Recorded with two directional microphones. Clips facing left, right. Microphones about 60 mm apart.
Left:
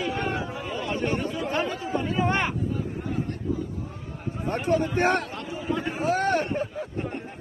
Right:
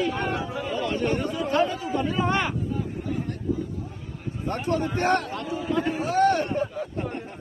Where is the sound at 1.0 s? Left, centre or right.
Left.